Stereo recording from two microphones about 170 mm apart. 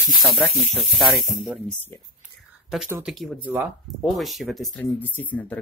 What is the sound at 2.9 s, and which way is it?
Speech, 5° right (ahead or behind).